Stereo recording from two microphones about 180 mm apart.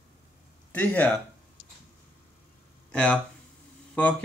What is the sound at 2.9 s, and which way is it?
Speech, 5° left (ahead or behind).